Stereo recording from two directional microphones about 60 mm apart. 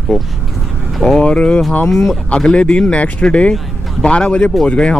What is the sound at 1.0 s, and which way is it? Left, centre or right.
Speech, centre.